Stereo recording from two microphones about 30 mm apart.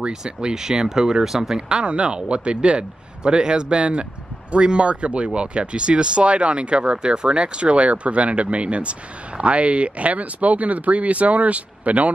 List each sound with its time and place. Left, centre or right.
0.6 s speech: centre
1.7 s speech: right